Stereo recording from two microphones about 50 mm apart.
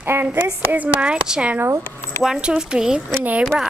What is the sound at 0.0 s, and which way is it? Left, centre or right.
Speech, right.